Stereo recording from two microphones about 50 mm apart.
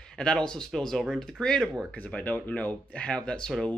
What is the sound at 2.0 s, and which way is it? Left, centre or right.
Speech, left.